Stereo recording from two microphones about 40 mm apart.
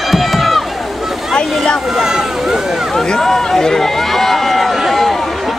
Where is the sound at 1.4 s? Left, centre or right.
Centre.